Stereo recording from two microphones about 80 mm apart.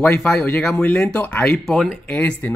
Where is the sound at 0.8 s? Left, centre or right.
Left.